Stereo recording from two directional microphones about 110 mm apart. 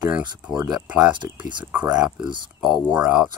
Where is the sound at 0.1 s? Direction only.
10° right (ahead or behind).